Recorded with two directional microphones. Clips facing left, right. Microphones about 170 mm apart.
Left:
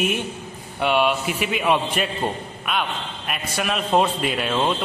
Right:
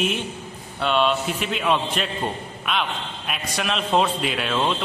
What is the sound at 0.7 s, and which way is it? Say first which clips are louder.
A man's voice: left 1 dB; 10° left (ahead or behind).